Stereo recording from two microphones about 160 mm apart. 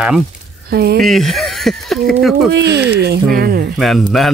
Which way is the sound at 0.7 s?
75° right (ahead or behind).